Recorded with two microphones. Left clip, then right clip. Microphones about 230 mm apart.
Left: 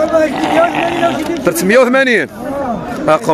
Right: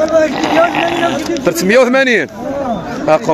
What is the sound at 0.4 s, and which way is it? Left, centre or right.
A man's voice, centre.